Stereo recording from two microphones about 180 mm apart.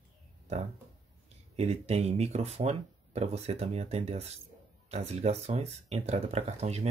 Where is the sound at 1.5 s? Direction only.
35° right (ahead or behind).